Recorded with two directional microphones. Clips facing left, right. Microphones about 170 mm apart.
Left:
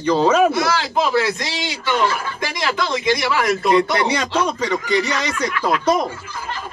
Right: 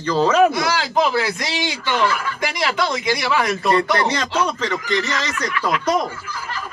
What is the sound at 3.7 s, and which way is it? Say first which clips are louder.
A man's voice: left 1 dB; 10° left (ahead or behind).